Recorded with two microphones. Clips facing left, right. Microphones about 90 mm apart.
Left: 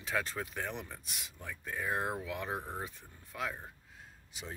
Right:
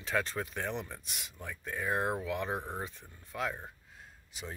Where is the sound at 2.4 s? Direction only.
20° right (ahead or behind).